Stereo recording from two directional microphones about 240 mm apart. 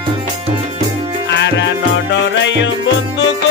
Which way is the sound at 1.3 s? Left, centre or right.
Left.